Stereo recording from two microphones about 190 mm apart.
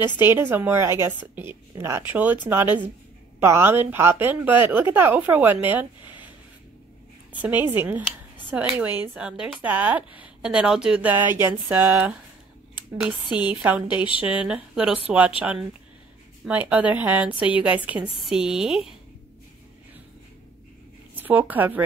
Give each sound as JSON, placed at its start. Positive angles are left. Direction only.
{"t": 0.2, "sound": "a woman's voice", "side_deg": -10}
{"t": 6.0, "sound": "a sound", "side_deg": 25}
{"t": 7.3, "sound": "a woman's voice", "side_deg": -10}
{"t": 21.2, "sound": "a woman's voice", "side_deg": -10}